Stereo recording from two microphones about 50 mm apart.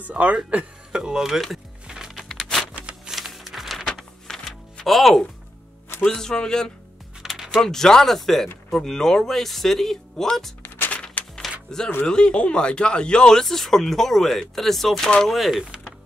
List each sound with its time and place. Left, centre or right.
0.1 s speech: right; by 1.4 s centre
1.9 s music: centre
2.1 s a sound: centre
3.1 s a sound: centre
3.8 s a sound: centre
4.8 s speech: centre
7.2 s music: centre
7.6 s speech: centre
11.2 s music: left
11.7 s speech: centre